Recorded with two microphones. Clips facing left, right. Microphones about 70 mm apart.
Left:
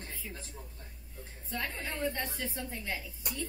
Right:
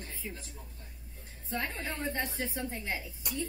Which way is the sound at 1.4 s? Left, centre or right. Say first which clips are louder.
Right 2 dB; right.